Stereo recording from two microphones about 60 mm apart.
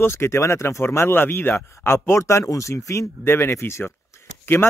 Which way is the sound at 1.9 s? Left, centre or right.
Left.